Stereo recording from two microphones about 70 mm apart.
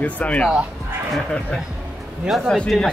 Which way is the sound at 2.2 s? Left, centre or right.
Centre.